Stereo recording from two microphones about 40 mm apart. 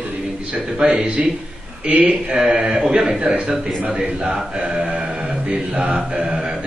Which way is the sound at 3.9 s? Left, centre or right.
Right.